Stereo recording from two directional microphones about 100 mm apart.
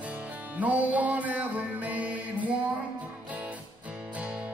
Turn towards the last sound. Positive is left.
turn(degrees=-10)  # may be behind; listen again after turning